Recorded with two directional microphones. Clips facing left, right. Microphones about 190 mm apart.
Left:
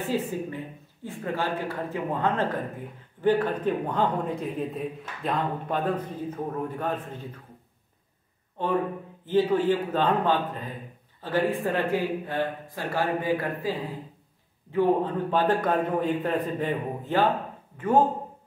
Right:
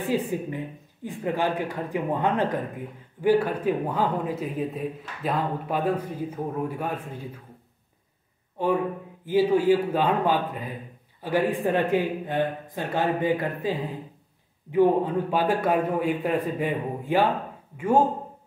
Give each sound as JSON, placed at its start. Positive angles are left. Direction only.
{"t": 0.1, "sound": "a man's voice", "side_deg": -15}
{"t": 8.6, "sound": "a man's voice", "side_deg": -10}